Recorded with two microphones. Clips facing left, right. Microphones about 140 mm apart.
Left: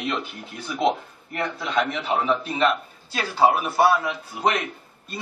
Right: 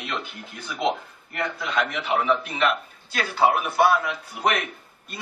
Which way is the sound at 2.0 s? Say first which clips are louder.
Even; 30° left (ahead or behind).